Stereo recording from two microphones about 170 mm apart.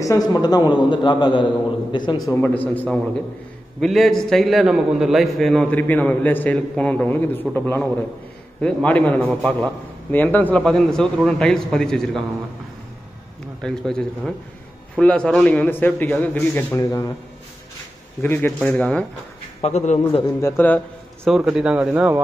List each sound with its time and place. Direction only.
0.0 s a man's voice: 20° left (ahead or behind)
2.3 s a man's voice: 10° left (ahead or behind)
3.8 s a man's voice: centre (ahead or behind)
13.6 s a man's voice: 5° left (ahead or behind)
18.2 s a man's voice: 10° left (ahead or behind)
19.6 s a man's voice: 40° left (ahead or behind)
20.3 s a man's voice: 15° left (ahead or behind)
21.3 s a man's voice: 5° right (ahead or behind)